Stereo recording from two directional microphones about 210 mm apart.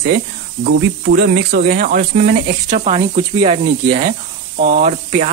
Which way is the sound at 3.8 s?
40° right (ahead or behind).